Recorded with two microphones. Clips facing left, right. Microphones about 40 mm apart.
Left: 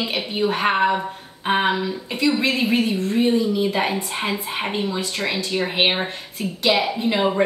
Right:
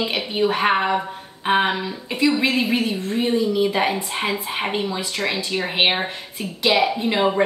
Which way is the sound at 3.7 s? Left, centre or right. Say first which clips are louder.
Right 1 dB; right.